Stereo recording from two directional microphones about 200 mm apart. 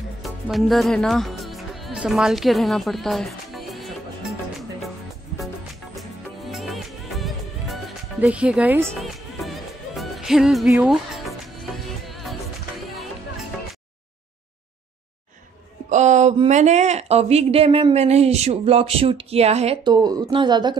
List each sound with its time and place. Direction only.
0.2 s music: centre (ahead or behind)
5.9 s music: centre (ahead or behind)
15.9 s speech: 35° right (ahead or behind)